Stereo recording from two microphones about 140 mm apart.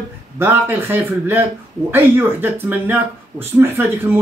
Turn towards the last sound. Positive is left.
turn(degrees=-15)  # may be behind; listen again after turning